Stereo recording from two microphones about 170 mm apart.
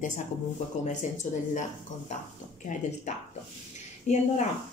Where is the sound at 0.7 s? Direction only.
45° left (ahead or behind).